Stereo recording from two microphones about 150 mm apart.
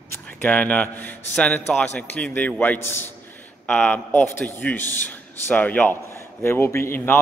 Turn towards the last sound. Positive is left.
turn(degrees=15)  # may be behind; listen again after turning